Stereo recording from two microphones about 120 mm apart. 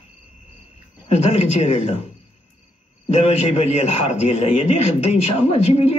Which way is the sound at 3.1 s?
65° left (ahead or behind).